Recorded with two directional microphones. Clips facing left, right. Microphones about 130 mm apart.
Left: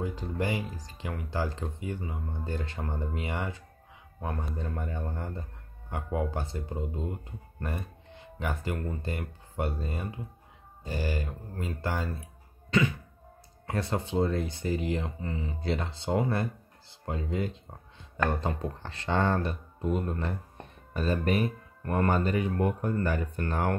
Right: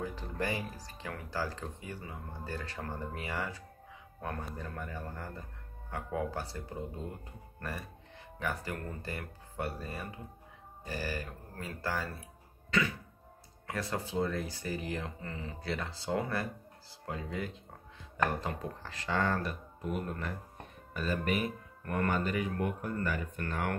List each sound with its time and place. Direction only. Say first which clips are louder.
0.0 s speech: left 4 dB; 15° left (ahead or behind)
8.4 s speech: left 4 dB; 20° left (ahead or behind)
13.7 s speech: left 5 dB; 25° left (ahead or behind)
15.0 s speech: left 6 dB; 15° left (ahead or behind)
15.6 s speech: left 5 dB; 25° left (ahead or behind)